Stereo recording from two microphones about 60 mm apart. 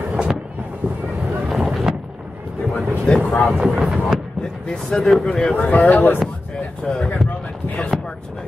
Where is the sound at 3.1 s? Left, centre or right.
Centre.